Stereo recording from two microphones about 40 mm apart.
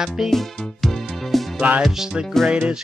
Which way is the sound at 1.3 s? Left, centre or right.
Centre.